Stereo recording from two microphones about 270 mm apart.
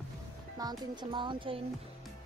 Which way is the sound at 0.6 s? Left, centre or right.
Centre.